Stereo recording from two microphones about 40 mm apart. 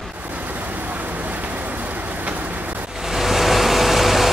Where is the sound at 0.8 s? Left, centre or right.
Right.